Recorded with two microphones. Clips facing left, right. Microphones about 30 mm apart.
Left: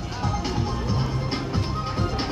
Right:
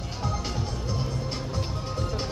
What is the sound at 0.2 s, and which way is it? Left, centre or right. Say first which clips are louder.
Music: left 4 dB; left.